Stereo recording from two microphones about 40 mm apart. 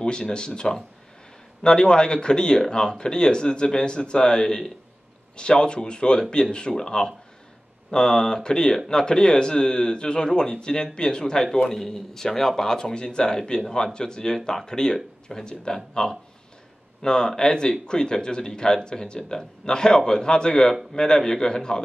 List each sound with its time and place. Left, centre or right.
0.0 s speech: left